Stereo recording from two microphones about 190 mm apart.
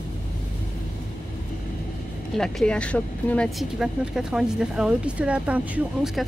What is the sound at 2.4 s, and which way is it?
Speech, 5° left (ahead or behind).